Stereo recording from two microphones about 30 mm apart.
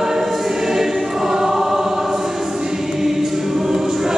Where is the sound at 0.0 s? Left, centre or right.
Centre.